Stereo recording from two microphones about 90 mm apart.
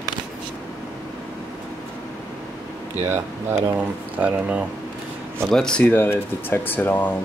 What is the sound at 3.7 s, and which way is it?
Speech, 15° right (ahead or behind).